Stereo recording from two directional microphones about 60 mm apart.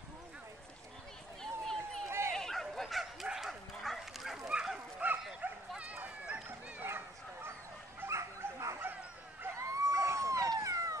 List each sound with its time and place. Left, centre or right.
1.4 s a sound: centre
2.0 s bow-wow: right
2.3 s bow-wow: centre
3.8 s dog: centre
4.5 s dog: centre
4.7 s bow-wow: right
5.8 s dog: right
8.1 s dog: right
9.6 s a sound: right